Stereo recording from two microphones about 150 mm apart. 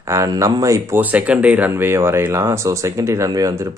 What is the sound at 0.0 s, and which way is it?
Speech, 20° right (ahead or behind).